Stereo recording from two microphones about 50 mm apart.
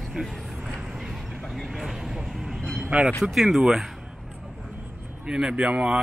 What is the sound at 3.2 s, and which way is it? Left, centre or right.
Speech, centre.